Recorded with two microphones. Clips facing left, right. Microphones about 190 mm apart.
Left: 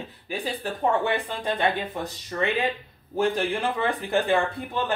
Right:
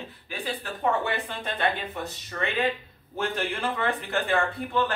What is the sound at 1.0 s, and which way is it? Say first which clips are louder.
Speech: left 4 dB; 15° left (ahead or behind).